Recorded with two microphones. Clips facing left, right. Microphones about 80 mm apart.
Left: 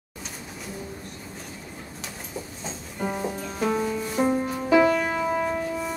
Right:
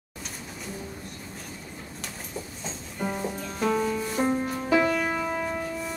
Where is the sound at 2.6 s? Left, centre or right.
Centre.